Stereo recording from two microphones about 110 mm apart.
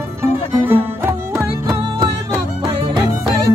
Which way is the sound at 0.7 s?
20° right (ahead or behind).